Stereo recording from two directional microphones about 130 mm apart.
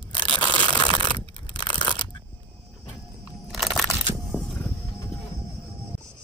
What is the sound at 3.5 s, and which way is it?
Crunch, centre (ahead or behind).